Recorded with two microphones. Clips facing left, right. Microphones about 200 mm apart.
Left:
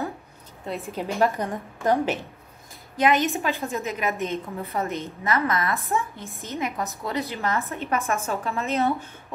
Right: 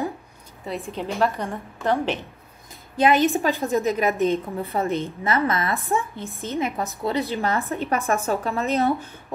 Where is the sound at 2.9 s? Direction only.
30° right (ahead or behind).